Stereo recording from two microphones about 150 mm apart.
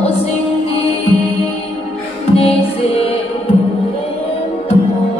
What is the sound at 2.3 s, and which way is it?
Music, 40° left (ahead or behind).